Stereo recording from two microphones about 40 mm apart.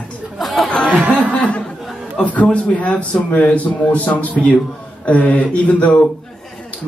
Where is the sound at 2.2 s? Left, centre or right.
Left.